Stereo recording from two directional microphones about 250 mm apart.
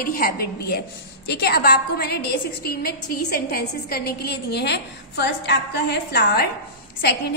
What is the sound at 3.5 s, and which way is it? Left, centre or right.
A woman's voice, left.